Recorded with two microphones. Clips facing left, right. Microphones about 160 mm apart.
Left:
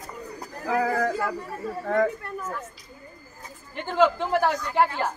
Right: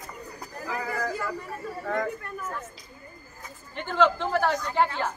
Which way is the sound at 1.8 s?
55° left (ahead or behind).